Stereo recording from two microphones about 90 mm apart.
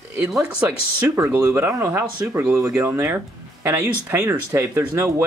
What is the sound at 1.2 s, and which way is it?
Speech, 35° right (ahead or behind).